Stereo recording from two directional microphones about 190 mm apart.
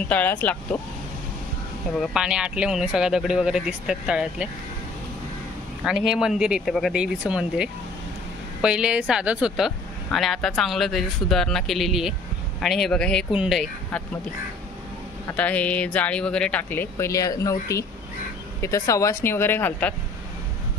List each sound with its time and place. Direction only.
0.1 s speech: 10° left (ahead or behind)
2.0 s speech: 5° right (ahead or behind)
5.9 s speech: 5° right (ahead or behind)
15.3 s speech: 5° left (ahead or behind)